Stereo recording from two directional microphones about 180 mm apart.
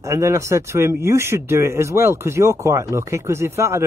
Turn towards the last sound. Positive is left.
turn(degrees=-15)  # may be behind; listen again after turning